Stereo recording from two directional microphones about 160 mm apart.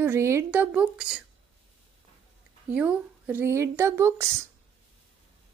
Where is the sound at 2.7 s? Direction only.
10° right (ahead or behind).